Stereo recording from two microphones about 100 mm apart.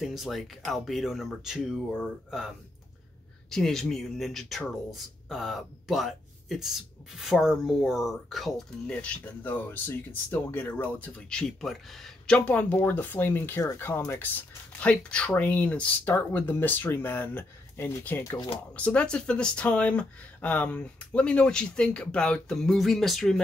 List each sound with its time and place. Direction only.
0.0 s speech: centre (ahead or behind)
12.4 s speech: 15° left (ahead or behind)
14.8 s speech: 10° left (ahead or behind)
18.7 s speech: 15° left (ahead or behind)